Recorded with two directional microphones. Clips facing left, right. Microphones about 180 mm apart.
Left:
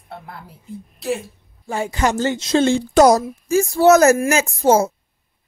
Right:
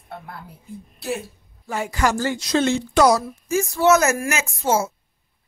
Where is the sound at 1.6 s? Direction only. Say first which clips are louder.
Left 2 dB; 30° left (ahead or behind).